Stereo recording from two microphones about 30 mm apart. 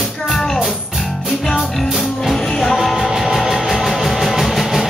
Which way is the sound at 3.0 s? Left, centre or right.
Centre.